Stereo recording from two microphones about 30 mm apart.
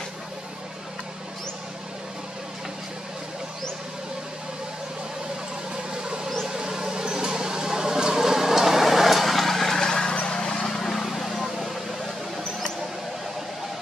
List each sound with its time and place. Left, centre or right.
6.0 s a sound: right; by 9.8 s centre
9.8 s vehicle: left
10.8 s vehicle: centre